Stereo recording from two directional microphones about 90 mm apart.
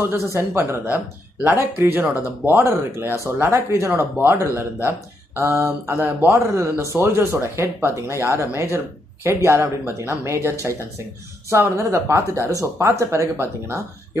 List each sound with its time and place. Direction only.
0.3 s speech: 25° right (ahead or behind)
2.6 s speech: 35° right (ahead or behind)
11.5 s speech: 30° right (ahead or behind)